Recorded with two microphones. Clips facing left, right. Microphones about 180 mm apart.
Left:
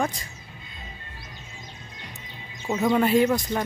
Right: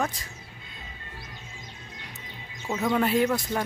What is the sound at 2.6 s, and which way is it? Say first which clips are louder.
Speech: left 4 dB; 15° left (ahead or behind).